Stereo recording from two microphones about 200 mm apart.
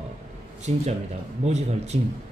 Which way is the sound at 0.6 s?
35° right (ahead or behind).